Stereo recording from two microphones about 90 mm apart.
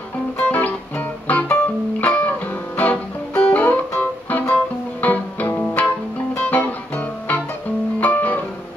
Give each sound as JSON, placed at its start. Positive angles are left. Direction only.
{"t": 0.4, "sound": "music", "side_deg": 15}
{"t": 6.5, "sound": "guitar", "side_deg": 15}